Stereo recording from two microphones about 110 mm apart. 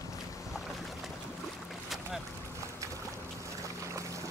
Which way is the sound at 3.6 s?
30° right (ahead or behind).